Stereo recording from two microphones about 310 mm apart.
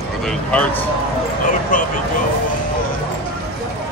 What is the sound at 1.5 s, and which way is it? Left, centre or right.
Speech, left.